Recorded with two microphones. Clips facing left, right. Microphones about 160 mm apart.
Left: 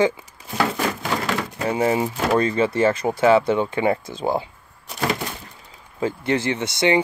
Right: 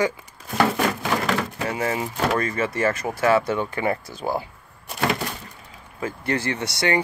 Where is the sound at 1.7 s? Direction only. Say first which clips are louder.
Left 8 dB; 20° left (ahead or behind).